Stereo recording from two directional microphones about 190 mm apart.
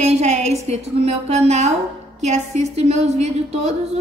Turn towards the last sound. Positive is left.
turn(degrees=-35)  # may be behind; listen again after turning